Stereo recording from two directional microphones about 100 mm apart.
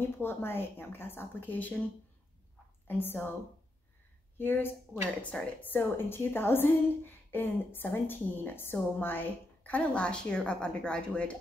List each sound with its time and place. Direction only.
0.2 s a woman's voice: 25° left (ahead or behind)
2.9 s a woman's voice: 20° left (ahead or behind)
4.4 s a woman's voice: 20° left (ahead or behind)
5.3 s a woman's voice: 10° left (ahead or behind)
5.7 s a woman's voice: 20° left (ahead or behind)